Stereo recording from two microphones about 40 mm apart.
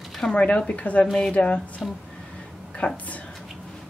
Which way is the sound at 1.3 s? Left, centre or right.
Left.